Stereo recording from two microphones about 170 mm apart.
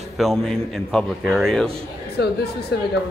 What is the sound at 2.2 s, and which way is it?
Speech, 75° left (ahead or behind).